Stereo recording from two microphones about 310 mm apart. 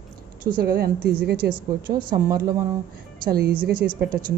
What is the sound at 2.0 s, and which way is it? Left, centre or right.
Speech, centre.